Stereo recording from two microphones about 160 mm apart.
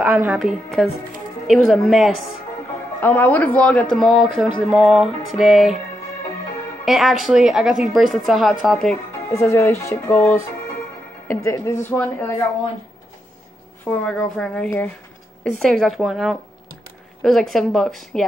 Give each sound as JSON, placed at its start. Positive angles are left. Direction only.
{"t": 0.0, "sound": "a woman's voice", "side_deg": -10}
{"t": 3.0, "sound": "a woman's voice", "side_deg": 10}
{"t": 6.8, "sound": "a woman's voice", "side_deg": 0}
{"t": 9.3, "sound": "speech", "side_deg": 15}
{"t": 13.8, "sound": "a woman's voice", "side_deg": 5}